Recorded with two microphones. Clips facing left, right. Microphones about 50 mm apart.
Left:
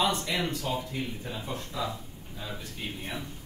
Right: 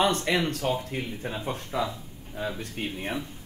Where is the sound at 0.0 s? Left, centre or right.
Right.